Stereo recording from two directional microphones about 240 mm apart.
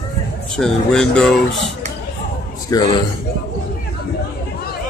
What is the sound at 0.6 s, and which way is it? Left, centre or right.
Speech, centre.